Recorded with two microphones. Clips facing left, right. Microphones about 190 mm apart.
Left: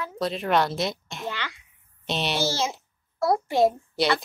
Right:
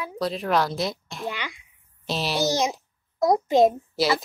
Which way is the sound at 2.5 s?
15° right (ahead or behind).